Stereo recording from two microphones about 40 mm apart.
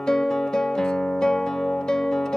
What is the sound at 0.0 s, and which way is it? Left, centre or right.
Music, centre.